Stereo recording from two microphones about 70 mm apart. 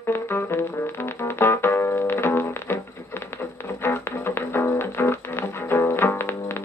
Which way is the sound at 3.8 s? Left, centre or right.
Left.